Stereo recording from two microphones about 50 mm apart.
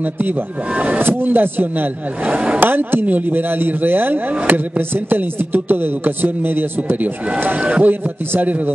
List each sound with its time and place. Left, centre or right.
0.0 s speech: right
2.3 s speech: right
2.6 s a sound: right
7.3 s speech: right